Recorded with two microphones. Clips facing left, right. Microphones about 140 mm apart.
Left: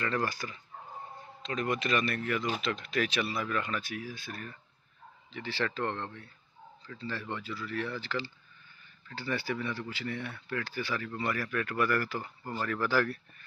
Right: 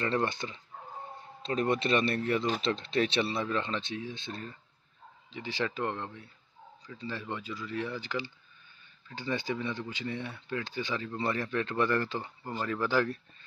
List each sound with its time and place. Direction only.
0.0 s speech: 25° right (ahead or behind)